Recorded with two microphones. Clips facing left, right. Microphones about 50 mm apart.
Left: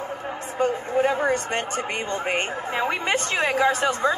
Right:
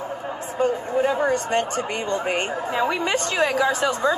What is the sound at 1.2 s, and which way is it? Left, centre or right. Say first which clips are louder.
A woman's voice: right 2 dB; left.